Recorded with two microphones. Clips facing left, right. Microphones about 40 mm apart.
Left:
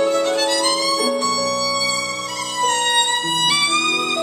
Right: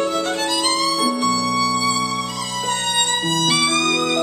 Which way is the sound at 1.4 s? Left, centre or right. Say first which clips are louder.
Right 1 dB; left.